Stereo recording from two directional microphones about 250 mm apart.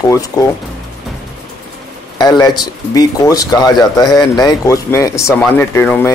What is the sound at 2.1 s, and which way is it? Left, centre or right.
Speech, centre.